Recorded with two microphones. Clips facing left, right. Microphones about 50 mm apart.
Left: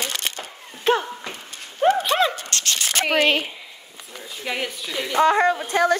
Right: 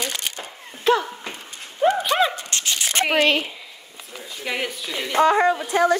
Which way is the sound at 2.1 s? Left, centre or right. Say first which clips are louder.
Even; right.